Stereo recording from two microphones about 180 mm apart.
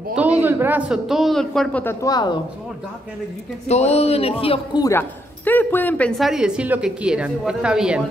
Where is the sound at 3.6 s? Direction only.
35° left (ahead or behind).